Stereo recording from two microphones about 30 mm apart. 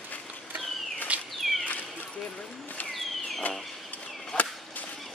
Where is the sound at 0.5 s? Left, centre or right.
Right.